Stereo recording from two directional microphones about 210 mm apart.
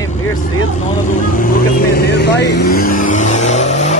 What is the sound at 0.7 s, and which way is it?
Speech, 35° left (ahead or behind).